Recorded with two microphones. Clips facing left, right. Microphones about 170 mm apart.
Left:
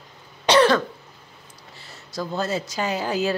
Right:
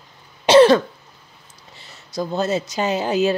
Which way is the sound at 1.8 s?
20° right (ahead or behind).